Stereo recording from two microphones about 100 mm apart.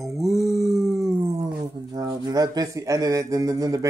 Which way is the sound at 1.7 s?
40° right (ahead or behind).